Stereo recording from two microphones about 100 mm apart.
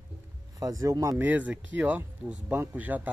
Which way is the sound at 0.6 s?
35° right (ahead or behind).